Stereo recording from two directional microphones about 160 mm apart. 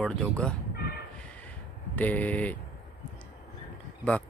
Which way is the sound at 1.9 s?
10° left (ahead or behind).